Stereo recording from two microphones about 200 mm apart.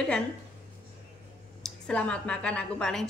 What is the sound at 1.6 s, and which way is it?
A woman's voice, 5° left (ahead or behind).